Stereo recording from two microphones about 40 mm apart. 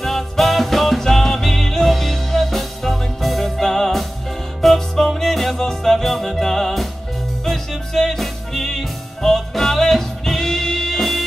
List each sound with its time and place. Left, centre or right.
0.0 s music: centre